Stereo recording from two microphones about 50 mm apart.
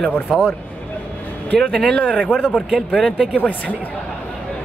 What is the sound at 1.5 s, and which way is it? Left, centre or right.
Speech, centre.